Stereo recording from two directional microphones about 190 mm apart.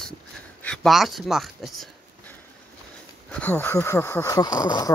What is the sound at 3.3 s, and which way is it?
Speech, 10° left (ahead or behind).